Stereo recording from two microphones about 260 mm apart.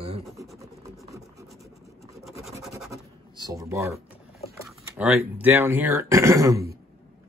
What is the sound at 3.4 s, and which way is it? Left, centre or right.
Speech, centre.